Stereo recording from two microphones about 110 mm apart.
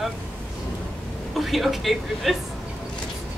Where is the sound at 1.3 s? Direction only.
Centre (ahead or behind).